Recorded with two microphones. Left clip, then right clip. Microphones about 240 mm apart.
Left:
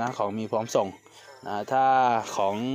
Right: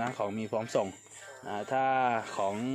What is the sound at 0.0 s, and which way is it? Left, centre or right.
Speech, left.